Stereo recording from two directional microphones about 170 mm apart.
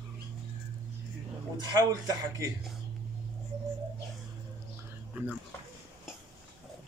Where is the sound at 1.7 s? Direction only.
20° right (ahead or behind).